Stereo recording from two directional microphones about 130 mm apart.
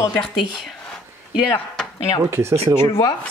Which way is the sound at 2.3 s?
20° right (ahead or behind).